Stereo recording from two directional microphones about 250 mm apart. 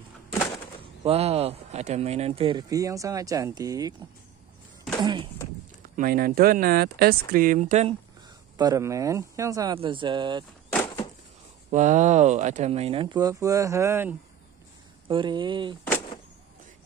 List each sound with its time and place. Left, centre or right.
1.0 s speech: right
5.0 s speech: centre
5.9 s speech: right
8.5 s speech: centre
11.7 s speech: right